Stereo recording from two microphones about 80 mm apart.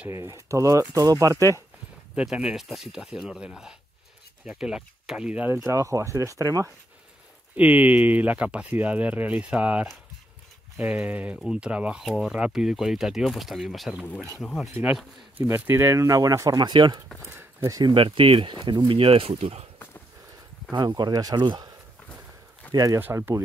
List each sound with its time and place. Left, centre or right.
0.1 s speech: right
2.1 s speech: centre
5.4 s speech: right
7.5 s speech: centre
15.4 s speech: right
16.4 s speech: right
17.6 s speech: right
17.9 s speech: right
20.8 s speech: right
22.7 s speech: right
22.9 s speech: right